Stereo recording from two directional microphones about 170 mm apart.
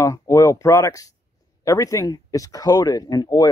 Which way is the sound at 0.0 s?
20° left (ahead or behind).